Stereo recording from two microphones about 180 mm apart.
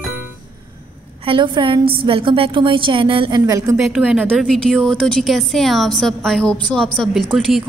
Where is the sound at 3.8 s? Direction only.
5° right (ahead or behind).